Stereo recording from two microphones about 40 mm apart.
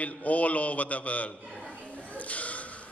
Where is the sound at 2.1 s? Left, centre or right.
Left.